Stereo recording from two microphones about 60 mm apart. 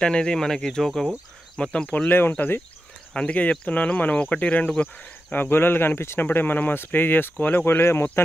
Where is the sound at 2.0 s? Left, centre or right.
Left.